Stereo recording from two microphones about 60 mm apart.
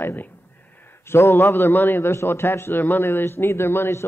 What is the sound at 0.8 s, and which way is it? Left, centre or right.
A man's voice, left.